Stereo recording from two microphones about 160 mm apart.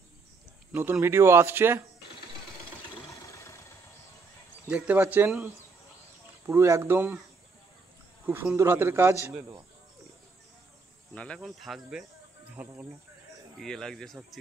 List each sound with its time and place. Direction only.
0.7 s speech: 15° right (ahead or behind)
3.1 s vehicle: 20° left (ahead or behind)
4.6 s speech: 10° right (ahead or behind)
8.3 s speech: 15° right (ahead or behind)
11.1 s speech: 5° left (ahead or behind)
13.6 s speech: 5° left (ahead or behind)